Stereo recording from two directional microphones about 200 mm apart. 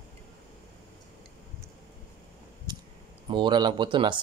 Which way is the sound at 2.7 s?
20° right (ahead or behind).